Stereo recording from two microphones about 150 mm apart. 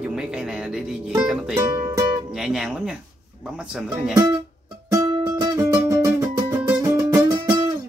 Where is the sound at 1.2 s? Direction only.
5° right (ahead or behind).